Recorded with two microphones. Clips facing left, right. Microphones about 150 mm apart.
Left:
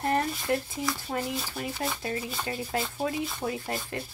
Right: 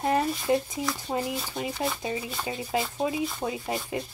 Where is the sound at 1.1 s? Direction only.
35° right (ahead or behind).